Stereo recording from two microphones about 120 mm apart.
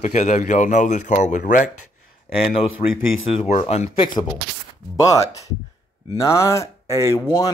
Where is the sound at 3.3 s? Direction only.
60° left (ahead or behind).